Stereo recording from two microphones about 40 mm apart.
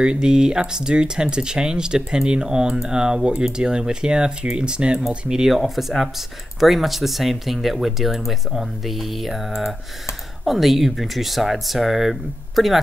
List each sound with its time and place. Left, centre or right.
0.0 s speech: centre
5.5 s speech: centre